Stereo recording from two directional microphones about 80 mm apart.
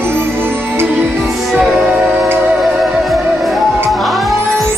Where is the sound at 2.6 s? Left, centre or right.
Centre.